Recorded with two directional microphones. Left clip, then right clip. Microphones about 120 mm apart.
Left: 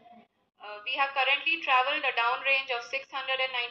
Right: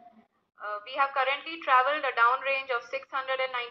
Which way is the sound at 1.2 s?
45° right (ahead or behind).